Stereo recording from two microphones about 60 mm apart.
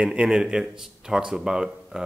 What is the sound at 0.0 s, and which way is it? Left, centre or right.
Speech, centre.